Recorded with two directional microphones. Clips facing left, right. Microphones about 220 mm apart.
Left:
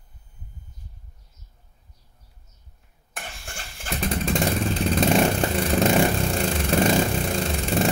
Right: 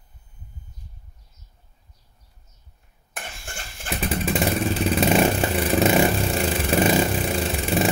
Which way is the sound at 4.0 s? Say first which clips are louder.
Right 1 dB; 5° right (ahead or behind).